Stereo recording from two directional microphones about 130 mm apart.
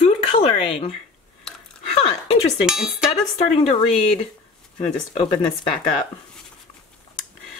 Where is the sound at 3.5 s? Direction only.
55° left (ahead or behind).